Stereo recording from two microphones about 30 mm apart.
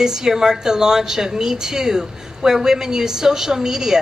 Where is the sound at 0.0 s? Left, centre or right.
Centre.